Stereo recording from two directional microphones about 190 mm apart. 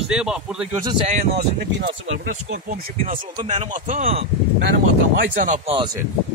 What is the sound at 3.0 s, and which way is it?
Speech, 40° right (ahead or behind).